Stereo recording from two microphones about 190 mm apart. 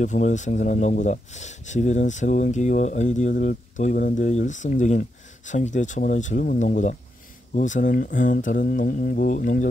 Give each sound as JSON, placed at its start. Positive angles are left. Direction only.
{"t": 0.0, "sound": "speech", "side_deg": 40}